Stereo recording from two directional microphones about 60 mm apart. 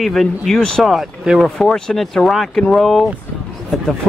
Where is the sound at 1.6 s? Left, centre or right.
Centre.